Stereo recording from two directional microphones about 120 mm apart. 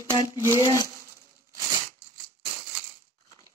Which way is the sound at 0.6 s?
30° left (ahead or behind).